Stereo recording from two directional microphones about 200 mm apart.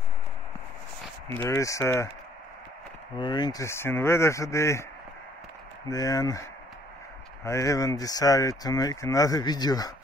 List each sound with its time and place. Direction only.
1.4 s speech: 15° left (ahead or behind)
3.2 s speech: 20° left (ahead or behind)
5.9 s speech: 20° left (ahead or behind)
7.4 s speech: 15° left (ahead or behind)